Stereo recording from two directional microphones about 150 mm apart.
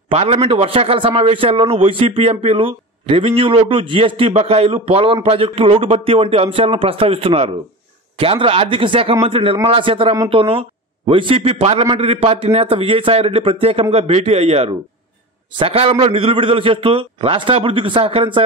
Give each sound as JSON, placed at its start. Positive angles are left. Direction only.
{"t": 0.1, "sound": "a man's voice", "side_deg": -40}